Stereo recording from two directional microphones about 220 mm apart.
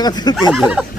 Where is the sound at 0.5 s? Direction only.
5° right (ahead or behind).